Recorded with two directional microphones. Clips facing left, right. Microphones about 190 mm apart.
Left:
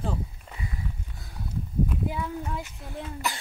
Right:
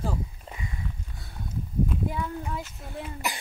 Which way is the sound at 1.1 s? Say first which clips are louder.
Even; centre (ahead or behind).